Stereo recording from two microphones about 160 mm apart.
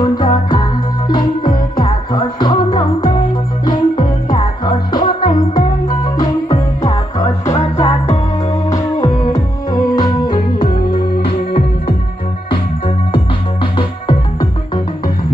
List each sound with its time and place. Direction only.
0.0 s music: 25° left (ahead or behind)
9.0 s music: 20° left (ahead or behind)